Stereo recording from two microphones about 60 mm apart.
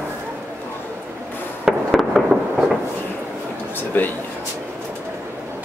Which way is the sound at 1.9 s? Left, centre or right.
Centre.